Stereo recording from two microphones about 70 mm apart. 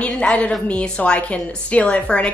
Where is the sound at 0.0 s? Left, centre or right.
Centre.